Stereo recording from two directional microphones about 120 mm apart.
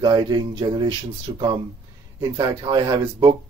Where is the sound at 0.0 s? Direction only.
35° right (ahead or behind).